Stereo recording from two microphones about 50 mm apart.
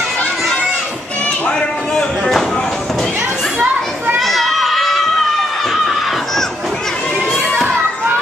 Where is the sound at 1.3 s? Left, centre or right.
Centre.